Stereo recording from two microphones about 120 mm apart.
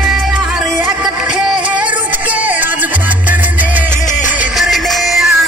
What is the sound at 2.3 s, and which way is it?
Music, 15° right (ahead or behind).